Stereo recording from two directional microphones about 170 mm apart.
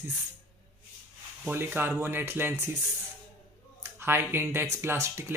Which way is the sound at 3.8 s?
15° right (ahead or behind).